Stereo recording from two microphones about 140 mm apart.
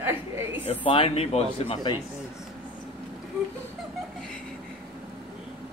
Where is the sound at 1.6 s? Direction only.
30° left (ahead or behind).